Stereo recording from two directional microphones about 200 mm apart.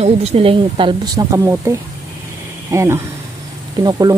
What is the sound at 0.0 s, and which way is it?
Speech, 30° right (ahead or behind).